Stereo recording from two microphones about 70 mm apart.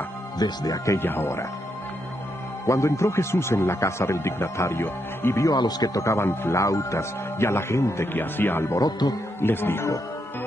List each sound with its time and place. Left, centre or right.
0.4 s speech: left
0.9 s speech: left
2.6 s speech: left
5.5 s speech: left
5.9 s speech: left
6.2 s speech: left
6.6 s speech: left
8.7 s speech: left
9.4 s speech: left